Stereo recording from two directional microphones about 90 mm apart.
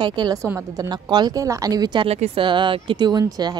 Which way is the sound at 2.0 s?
75° right (ahead or behind).